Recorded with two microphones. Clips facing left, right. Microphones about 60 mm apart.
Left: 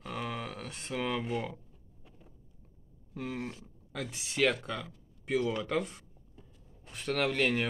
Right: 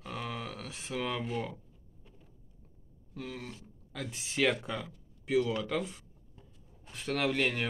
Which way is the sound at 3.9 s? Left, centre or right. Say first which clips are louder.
Left 1 dB; centre.